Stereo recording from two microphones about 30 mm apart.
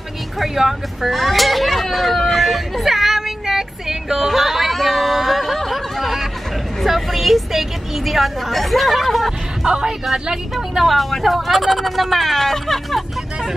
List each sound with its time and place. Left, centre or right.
0.6 s a sound: centre
6.8 s a woman's voice: centre
9.7 s speech: right
10.8 s a woman's voice: centre